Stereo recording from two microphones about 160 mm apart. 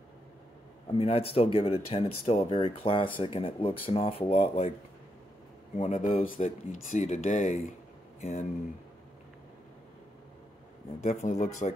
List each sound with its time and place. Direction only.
0.9 s speech: 35° left (ahead or behind)
5.8 s speech: 45° left (ahead or behind)
6.2 s speech: 55° left (ahead or behind)
11.0 s speech: 45° left (ahead or behind)